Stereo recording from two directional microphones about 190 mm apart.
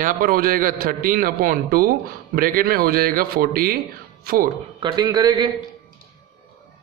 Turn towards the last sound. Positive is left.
turn(degrees=-20)  # may be behind; listen again after turning